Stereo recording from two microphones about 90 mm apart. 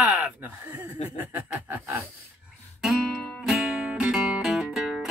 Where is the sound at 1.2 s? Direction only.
20° right (ahead or behind).